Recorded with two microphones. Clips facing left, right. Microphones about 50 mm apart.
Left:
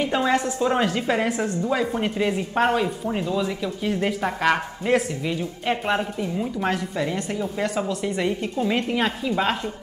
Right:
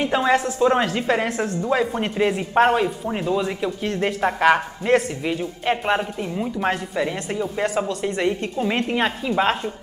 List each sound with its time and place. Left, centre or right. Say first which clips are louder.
0.0 s a woman's voice: right 2 dB; centre
4.9 s a woman's voice: right 3 dB; centre
5.2 s a woman's voice: right 2 dB; centre
7.6 s a woman's voice: right 2 dB; centre
8.5 s a woman's voice: left 1 dB; centre